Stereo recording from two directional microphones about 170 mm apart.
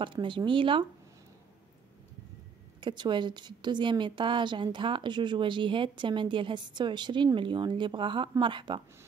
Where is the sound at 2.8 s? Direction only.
25° right (ahead or behind).